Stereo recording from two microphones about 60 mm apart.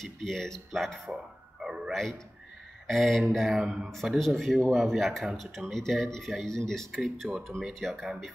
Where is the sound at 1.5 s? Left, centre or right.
Centre.